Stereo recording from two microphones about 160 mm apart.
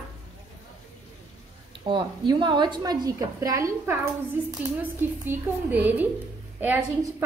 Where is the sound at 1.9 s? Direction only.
30° right (ahead or behind).